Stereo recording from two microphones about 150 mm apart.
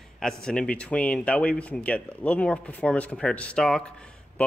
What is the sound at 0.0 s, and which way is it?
Speech, 5° left (ahead or behind).